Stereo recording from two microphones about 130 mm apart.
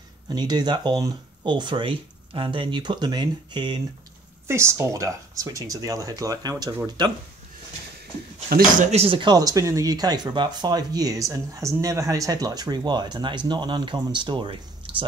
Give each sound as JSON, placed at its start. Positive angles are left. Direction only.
{"t": 0.3, "sound": "speech", "side_deg": -35}
{"t": 4.5, "sound": "speech", "side_deg": -20}
{"t": 8.9, "sound": "speech", "side_deg": -45}